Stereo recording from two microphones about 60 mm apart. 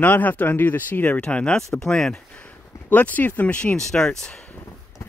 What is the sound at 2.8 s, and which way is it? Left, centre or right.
Speech, left.